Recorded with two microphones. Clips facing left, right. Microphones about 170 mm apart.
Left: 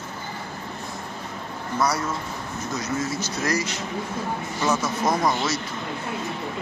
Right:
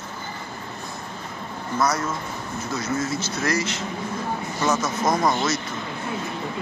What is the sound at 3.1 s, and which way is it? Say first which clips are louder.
Speech: right 1 dB; 15° left (ahead or behind).